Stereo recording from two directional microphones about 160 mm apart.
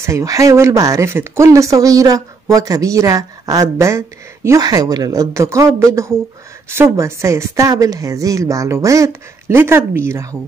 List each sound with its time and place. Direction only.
0.0 s speech: 20° right (ahead or behind)